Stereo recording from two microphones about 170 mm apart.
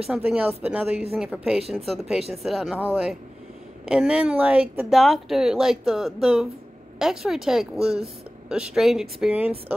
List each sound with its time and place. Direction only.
0.0 s speech: 5° right (ahead or behind)